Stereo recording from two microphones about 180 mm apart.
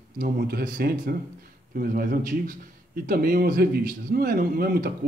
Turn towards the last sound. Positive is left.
turn(degrees=-55)  # may be behind; listen again after turning